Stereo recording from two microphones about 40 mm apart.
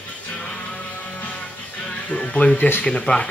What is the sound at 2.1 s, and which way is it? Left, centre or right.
Speech, left.